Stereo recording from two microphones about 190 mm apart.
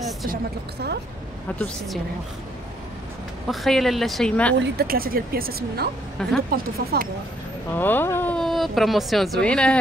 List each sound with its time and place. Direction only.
3.4 s speech: centre (ahead or behind)
4.6 s speech: 50° right (ahead or behind)
6.2 s speech: 5° left (ahead or behind)
6.5 s speech: 50° right (ahead or behind)
7.7 s speech: 10° left (ahead or behind)